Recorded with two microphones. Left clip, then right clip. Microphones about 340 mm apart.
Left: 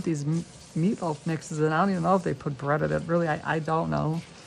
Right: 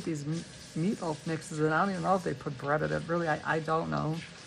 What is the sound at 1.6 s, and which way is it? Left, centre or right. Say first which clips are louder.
Speech: left 4 dB; left.